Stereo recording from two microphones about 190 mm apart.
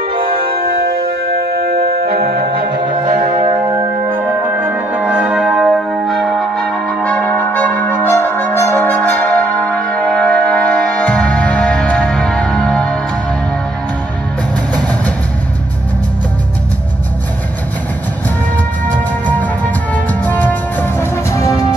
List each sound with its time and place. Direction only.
0.3 s music: 30° right (ahead or behind)
0.6 s music: 55° right (ahead or behind)
2.8 s music: 25° right (ahead or behind); by 13.0 s 5° left (ahead or behind)
19.2 s music: 10° left (ahead or behind)